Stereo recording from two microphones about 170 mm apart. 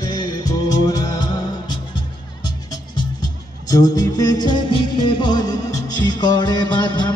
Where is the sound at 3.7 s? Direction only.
20° left (ahead or behind).